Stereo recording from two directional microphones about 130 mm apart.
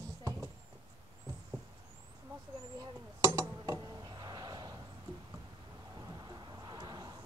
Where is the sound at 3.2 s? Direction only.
25° right (ahead or behind).